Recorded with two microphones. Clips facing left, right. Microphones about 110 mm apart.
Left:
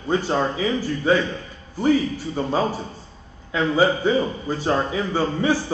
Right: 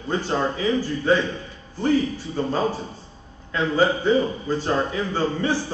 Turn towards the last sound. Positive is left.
turn(degrees=15)  # may be behind; listen again after turning